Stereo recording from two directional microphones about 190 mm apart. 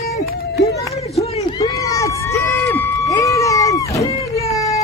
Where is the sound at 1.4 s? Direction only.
20° left (ahead or behind).